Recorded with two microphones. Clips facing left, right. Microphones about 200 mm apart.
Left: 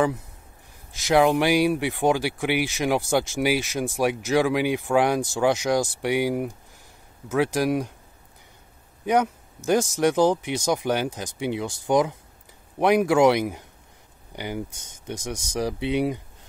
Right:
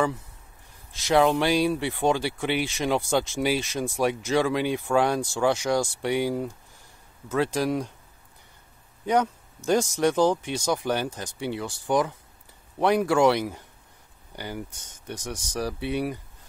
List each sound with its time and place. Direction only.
1.0 s speech: 10° left (ahead or behind)
9.0 s speech: 10° left (ahead or behind)